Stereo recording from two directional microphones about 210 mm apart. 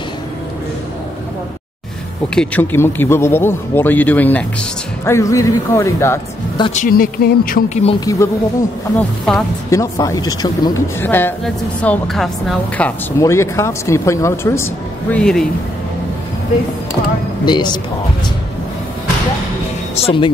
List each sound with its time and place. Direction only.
2.3 s speech: 10° left (ahead or behind)
6.6 s speech: 35° left (ahead or behind)
7.8 s speech: 20° left (ahead or behind)
9.7 s speech: 15° left (ahead or behind)
17.5 s speech: 20° left (ahead or behind)
20.0 s speech: 25° left (ahead or behind)